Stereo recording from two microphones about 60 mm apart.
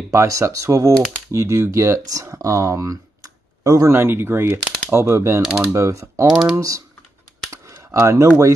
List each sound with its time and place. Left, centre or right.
0.1 s speech: right
2.2 s speech: right
3.9 s speech: right
5.7 s speech: right
7.9 s speech: right